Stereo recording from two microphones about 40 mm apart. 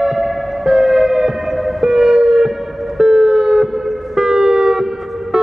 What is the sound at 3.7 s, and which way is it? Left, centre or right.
Siren, centre.